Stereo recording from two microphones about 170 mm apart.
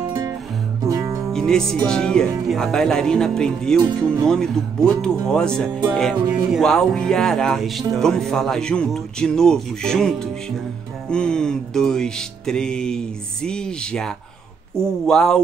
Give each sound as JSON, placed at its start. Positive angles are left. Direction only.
{"t": 0.8, "sound": "music", "side_deg": -20}
{"t": 1.3, "sound": "speech", "side_deg": 5}